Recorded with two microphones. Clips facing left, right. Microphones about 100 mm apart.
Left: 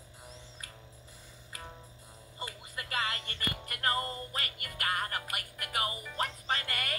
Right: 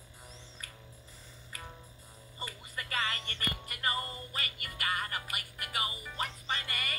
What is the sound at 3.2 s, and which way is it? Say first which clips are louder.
Music: even; 55° left (ahead or behind).